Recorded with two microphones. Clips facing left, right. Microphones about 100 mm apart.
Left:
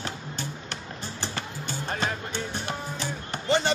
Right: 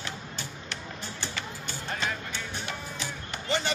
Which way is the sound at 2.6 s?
40° left (ahead or behind).